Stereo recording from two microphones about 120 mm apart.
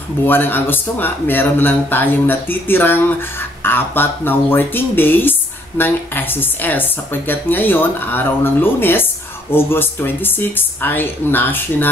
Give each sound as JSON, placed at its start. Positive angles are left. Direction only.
{"t": 0.3, "sound": "a woman's voice", "side_deg": 15}